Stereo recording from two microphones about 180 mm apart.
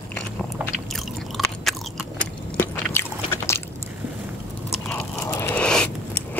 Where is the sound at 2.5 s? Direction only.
15° left (ahead or behind).